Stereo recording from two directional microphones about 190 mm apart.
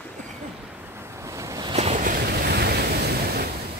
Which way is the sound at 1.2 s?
15° right (ahead or behind).